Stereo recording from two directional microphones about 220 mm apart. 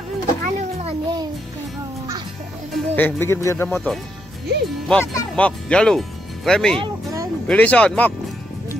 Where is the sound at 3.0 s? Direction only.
10° left (ahead or behind).